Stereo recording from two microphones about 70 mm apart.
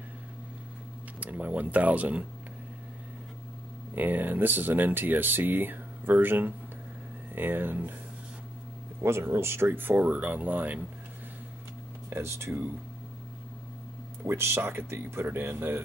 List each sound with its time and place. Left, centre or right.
1.2 s speech: centre
3.9 s speech: right
9.0 s speech: right
12.1 s speech: right
14.2 s speech: right